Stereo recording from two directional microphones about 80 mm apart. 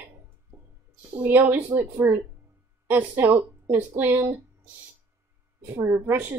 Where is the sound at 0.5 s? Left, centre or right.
Right.